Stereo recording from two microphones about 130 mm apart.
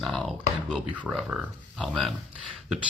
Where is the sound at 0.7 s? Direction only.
10° right (ahead or behind).